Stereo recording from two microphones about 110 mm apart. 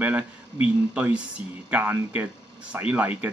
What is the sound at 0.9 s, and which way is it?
Speech, 15° right (ahead or behind).